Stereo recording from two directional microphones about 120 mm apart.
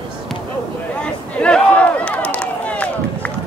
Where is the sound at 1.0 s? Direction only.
10° left (ahead or behind).